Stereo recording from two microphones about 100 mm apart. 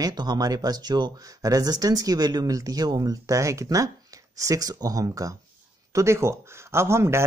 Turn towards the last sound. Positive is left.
turn(degrees=-25)  # may be behind; listen again after turning